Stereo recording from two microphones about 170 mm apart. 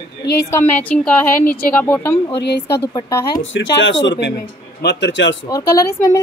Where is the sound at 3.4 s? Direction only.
90° left.